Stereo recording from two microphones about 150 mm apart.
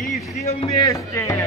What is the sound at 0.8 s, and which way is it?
Music, 20° left (ahead or behind).